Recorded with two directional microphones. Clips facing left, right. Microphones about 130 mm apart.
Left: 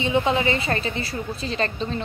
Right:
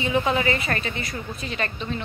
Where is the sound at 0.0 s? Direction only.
25° left (ahead or behind).